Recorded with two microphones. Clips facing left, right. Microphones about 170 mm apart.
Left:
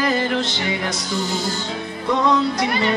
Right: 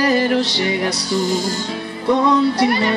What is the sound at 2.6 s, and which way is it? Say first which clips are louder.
Music: right 4 dB; 35° right (ahead or behind).